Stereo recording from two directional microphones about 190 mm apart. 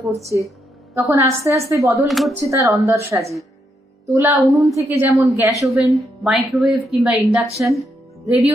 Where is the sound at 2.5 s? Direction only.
15° right (ahead or behind).